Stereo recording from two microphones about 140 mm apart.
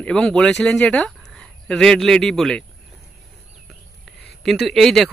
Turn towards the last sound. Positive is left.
turn(degrees=0)  # may be behind; listen again after turning